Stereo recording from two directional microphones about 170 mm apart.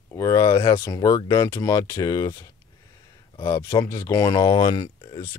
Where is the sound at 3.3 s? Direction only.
25° left (ahead or behind).